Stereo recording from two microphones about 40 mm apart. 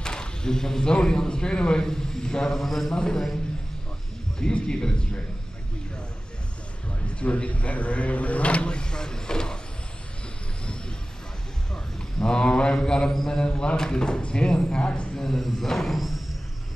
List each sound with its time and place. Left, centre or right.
0.0 s a sound: centre
0.9 s a man's voice: centre
2.6 s a man's voice: centre
2.9 s speech: centre
4.4 s a man's voice: left
7.2 s speech: left
11.7 s a man's voice: left
15.1 s speech: centre